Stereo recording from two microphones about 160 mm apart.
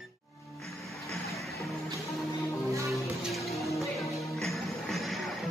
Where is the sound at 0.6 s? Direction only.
Centre (ahead or behind).